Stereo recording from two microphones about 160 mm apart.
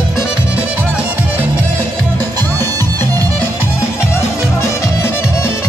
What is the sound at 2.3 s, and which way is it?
Music, 25° right (ahead or behind).